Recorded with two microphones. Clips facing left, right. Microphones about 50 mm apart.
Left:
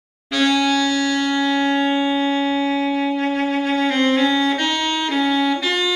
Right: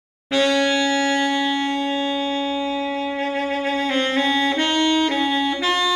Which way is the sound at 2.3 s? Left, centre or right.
Left.